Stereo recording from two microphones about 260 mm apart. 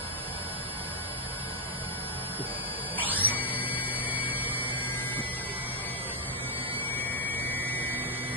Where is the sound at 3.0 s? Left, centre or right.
Centre.